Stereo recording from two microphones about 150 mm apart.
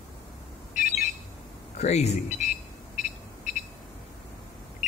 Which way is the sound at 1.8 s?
45° left (ahead or behind).